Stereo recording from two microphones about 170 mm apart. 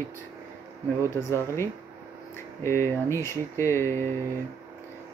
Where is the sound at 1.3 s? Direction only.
15° left (ahead or behind).